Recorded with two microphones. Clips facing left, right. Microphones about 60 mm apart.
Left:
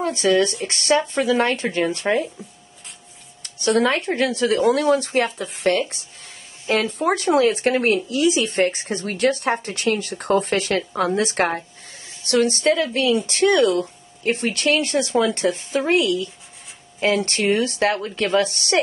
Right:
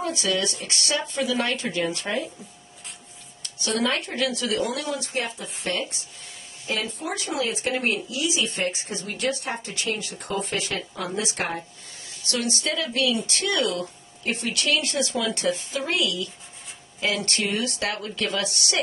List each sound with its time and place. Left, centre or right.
0.0 s speech: left
3.5 s speech: left
5.2 s speech: left
12.3 s speech: left